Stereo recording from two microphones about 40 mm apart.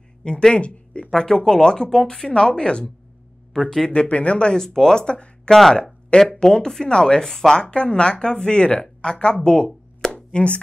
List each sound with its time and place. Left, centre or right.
0.2 s a sound: left
1.1 s speech: centre
3.9 s speech: left
4.6 s speech: centre
5.5 s speech: centre
6.4 s speech: centre
7.6 s speech: left
10.1 s chopping: left